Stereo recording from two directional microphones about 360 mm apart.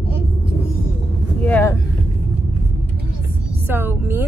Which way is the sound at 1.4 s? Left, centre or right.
Centre.